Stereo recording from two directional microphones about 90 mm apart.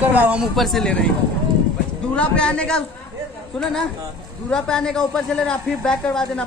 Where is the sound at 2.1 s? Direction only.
10° left (ahead or behind).